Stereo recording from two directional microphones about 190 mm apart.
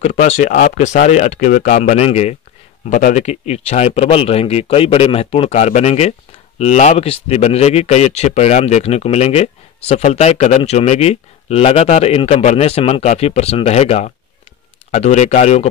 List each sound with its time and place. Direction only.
0.0 s speech: 35° left (ahead or behind)